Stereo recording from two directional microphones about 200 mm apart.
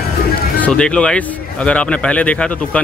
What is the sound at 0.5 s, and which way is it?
Speech, 5° left (ahead or behind).